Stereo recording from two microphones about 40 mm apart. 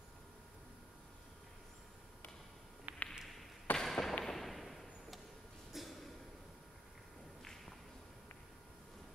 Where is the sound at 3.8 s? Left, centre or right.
Centre.